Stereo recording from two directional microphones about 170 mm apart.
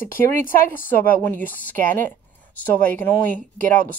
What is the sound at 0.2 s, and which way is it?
Speech, 15° left (ahead or behind).